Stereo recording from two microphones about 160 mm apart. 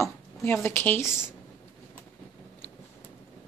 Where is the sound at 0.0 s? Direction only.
15° left (ahead or behind).